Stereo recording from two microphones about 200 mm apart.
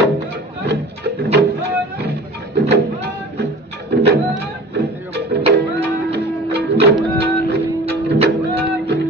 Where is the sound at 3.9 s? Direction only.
55° right (ahead or behind).